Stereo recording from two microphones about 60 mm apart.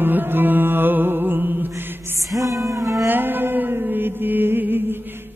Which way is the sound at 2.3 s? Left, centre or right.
Right.